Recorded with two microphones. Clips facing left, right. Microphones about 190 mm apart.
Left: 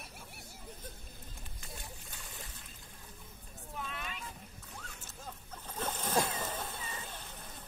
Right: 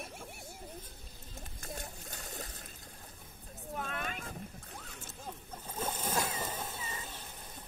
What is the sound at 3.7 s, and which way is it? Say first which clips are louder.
Vehicle: right 4 dB; 50° right (ahead or behind).